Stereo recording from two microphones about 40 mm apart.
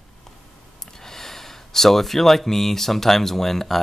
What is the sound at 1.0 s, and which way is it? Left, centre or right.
Speech, centre.